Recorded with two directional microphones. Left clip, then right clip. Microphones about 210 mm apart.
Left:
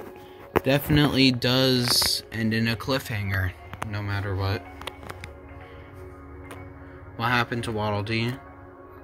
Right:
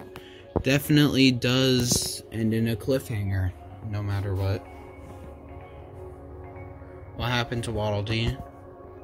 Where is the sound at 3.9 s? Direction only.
20° right (ahead or behind).